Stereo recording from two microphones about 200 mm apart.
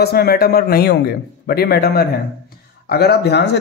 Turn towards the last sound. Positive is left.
turn(degrees=55)  # may be behind; listen again after turning